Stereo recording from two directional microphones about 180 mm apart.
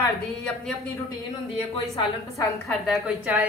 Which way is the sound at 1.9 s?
20° left (ahead or behind).